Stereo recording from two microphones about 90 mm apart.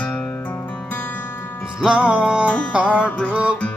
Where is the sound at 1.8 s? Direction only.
10° right (ahead or behind).